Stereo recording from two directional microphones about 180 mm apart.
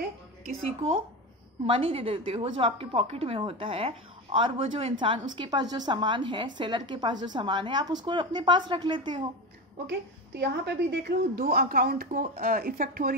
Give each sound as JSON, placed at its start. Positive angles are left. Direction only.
{"t": 1.7, "sound": "a woman's voice", "side_deg": -30}
{"t": 9.8, "sound": "a woman's voice", "side_deg": -65}